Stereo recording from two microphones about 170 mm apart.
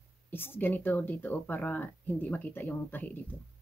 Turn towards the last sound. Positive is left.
turn(degrees=10)  # may be behind; listen again after turning